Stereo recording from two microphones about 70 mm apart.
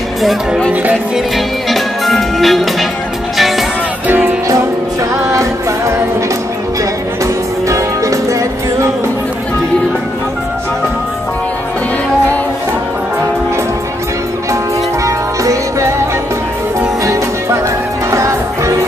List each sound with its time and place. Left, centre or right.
1.7 s music: centre
5.3 s music: right
7.6 s music: right
15.0 s music: right
17.0 s music: right